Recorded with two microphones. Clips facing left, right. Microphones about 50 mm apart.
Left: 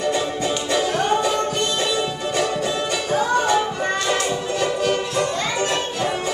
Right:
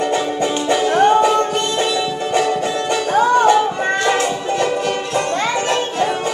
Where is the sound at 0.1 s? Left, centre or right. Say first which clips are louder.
Right 4 dB; centre.